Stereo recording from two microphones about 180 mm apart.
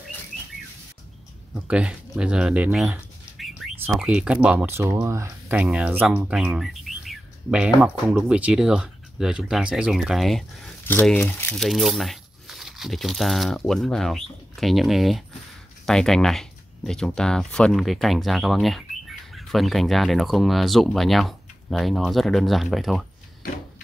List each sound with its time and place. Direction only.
1.5 s speech: 5° right (ahead or behind)
5.6 s speech: 5° right (ahead or behind)